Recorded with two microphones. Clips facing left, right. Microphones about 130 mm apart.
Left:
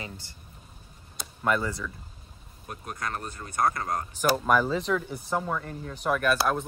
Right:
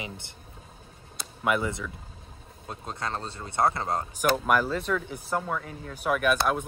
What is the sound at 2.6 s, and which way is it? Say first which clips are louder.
Speech: right 1 dB; 25° right (ahead or behind).